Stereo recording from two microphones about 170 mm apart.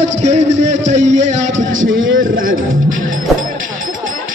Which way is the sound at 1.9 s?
55° right (ahead or behind).